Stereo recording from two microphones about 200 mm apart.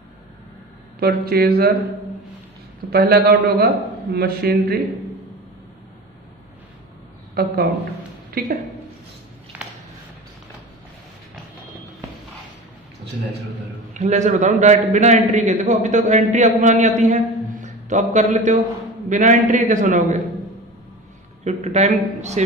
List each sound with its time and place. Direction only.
0.9 s a man's voice: 50° right (ahead or behind)
2.9 s a man's voice: 50° right (ahead or behind)
8.3 s a woman's voice: 45° right (ahead or behind)
9.5 s a sound: 5° right (ahead or behind)
13.9 s a man's voice: 35° right (ahead or behind)
21.5 s a man's voice: 35° right (ahead or behind)